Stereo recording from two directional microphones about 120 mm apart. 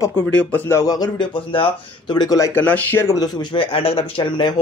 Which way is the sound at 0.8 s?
30° left (ahead or behind).